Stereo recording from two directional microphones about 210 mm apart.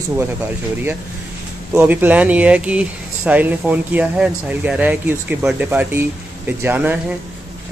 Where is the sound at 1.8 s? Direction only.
10° right (ahead or behind).